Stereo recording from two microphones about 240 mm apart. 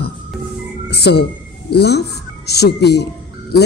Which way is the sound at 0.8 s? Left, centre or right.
Left.